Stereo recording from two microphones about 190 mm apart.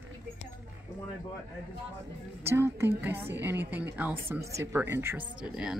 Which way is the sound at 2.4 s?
15° right (ahead or behind).